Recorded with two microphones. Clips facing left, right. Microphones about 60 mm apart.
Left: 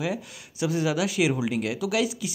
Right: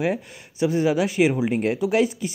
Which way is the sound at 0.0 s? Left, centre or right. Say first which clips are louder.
Right 5 dB; right.